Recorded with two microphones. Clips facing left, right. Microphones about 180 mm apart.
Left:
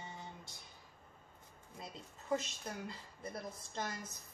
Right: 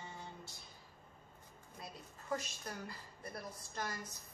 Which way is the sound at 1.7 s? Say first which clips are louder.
Left 2 dB; 20° left (ahead or behind).